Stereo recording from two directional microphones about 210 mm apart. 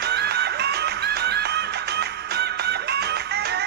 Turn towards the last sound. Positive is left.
turn(degrees=-50)  # may be behind; listen again after turning